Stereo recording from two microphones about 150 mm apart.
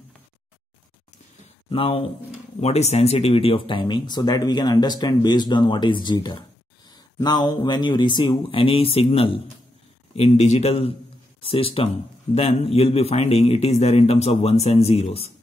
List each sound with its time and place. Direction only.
1.7 s a man's voice: 35° left (ahead or behind)